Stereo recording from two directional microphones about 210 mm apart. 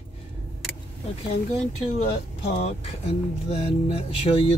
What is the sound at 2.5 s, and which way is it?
Speech, 30° left (ahead or behind).